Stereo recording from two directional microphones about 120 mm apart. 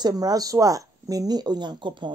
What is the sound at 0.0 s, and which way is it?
Speech, 35° right (ahead or behind).